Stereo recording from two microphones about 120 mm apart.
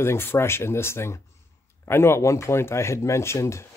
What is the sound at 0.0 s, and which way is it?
Speech, 20° left (ahead or behind).